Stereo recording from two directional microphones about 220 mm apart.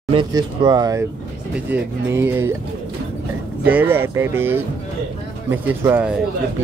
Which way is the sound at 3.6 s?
10° right (ahead or behind).